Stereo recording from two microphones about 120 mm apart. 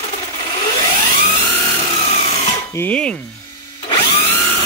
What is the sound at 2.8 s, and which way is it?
Speech, 10° left (ahead or behind).